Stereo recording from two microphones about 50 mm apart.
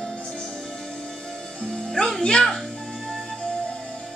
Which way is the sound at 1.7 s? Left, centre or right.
Centre.